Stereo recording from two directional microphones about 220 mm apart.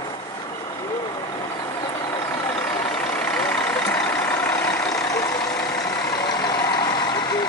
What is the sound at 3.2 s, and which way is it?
Vehicle, 5° left (ahead or behind).